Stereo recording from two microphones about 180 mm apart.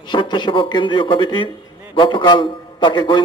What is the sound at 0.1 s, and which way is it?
A man's voice, 25° left (ahead or behind).